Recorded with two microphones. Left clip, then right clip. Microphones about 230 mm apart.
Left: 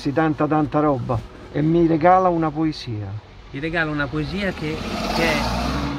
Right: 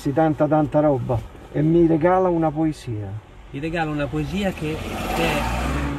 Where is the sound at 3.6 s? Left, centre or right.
Centre.